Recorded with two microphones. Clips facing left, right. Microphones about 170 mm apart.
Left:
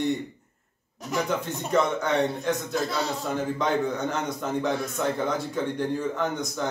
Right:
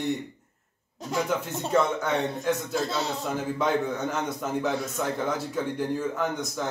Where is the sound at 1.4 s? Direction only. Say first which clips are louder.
Even; 5° right (ahead or behind).